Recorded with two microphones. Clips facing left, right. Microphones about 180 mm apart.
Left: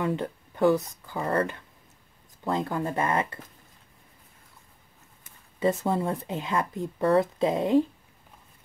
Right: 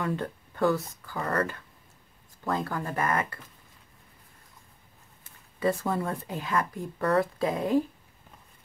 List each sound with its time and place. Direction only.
0.0 s speech: 20° left (ahead or behind)
5.6 s speech: 20° left (ahead or behind)